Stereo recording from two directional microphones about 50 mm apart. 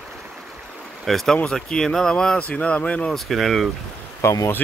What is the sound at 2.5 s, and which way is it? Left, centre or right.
Speech, left.